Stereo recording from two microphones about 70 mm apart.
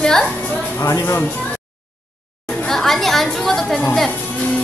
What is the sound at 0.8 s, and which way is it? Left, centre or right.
Speech, left.